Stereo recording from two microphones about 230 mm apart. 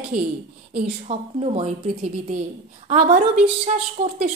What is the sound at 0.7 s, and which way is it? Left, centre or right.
A woman's voice, right.